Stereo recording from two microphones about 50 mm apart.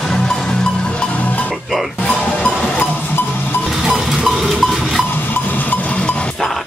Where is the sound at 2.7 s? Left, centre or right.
Left.